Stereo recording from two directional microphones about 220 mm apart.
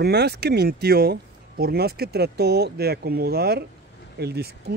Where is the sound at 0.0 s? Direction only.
45° right (ahead or behind).